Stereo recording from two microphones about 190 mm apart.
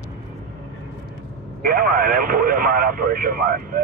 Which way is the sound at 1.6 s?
50° right (ahead or behind).